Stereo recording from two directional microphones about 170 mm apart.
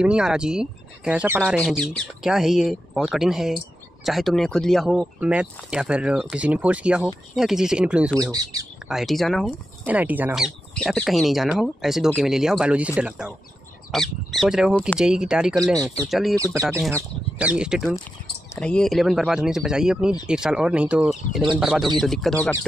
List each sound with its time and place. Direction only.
0.0 s speech: 5° right (ahead or behind)
8.2 s speech: 20° right (ahead or behind)
8.8 s speech: centre (ahead or behind)
9.8 s speech: 10° right (ahead or behind)
16.3 s speech: 20° right (ahead or behind)
16.9 s speech: 10° right (ahead or behind); by 22.7 s 10° left (ahead or behind)